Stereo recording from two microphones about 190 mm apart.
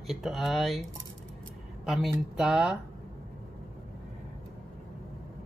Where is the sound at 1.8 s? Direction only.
Centre (ahead or behind).